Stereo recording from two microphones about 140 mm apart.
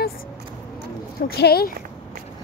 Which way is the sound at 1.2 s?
90° left.